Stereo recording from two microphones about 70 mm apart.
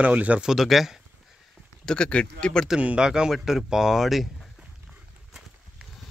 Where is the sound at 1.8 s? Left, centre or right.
Centre.